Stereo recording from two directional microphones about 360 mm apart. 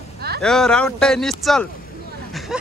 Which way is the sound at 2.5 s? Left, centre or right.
Centre.